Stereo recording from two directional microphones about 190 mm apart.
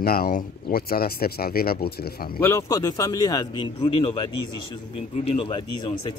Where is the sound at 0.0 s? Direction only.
50° left (ahead or behind).